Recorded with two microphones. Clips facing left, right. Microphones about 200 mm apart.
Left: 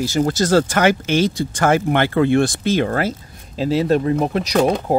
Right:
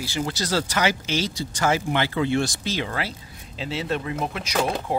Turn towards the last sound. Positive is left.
turn(degrees=40)  # may be behind; listen again after turning